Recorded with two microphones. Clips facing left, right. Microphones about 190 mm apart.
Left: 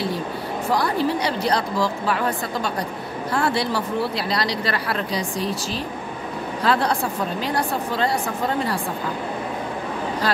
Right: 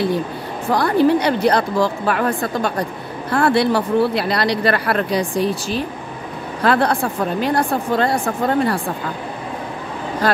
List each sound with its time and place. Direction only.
0.7 s speech: 55° right (ahead or behind)
10.2 s speech: 50° right (ahead or behind)